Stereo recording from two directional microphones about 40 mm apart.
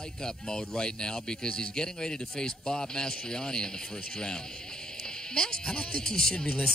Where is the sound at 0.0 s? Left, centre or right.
Centre.